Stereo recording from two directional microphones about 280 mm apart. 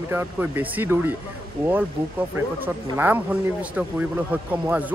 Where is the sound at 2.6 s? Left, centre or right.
Centre.